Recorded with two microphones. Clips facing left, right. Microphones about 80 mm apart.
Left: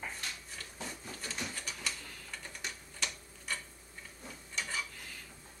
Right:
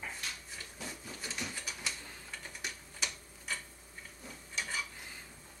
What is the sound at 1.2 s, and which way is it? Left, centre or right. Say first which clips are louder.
Mechanisms: even; centre.